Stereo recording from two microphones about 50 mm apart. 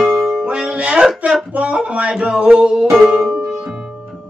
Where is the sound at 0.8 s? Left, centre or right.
Centre.